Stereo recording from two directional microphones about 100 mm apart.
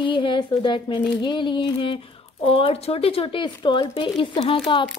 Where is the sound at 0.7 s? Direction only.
55° left (ahead or behind).